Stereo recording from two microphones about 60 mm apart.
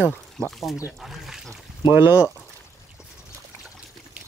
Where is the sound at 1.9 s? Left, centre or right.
Right.